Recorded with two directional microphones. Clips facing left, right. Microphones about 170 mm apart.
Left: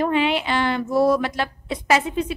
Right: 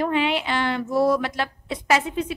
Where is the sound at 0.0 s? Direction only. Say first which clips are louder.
Left 2 dB; 35° left (ahead or behind).